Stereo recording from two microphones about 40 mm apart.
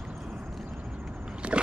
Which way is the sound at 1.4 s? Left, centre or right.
Right.